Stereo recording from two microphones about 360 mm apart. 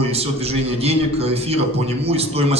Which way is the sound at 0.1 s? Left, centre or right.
Centre.